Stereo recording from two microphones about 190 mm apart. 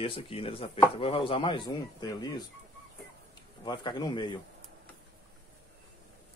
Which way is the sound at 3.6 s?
20° left (ahead or behind).